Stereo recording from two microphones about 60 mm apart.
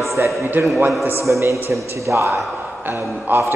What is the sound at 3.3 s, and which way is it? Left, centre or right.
Speech, right.